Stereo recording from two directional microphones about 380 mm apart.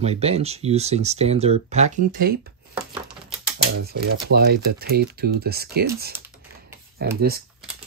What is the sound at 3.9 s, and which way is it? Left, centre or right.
Speech, right.